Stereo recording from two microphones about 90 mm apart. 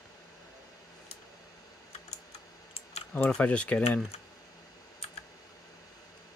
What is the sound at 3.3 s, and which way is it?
Speech, 10° left (ahead or behind).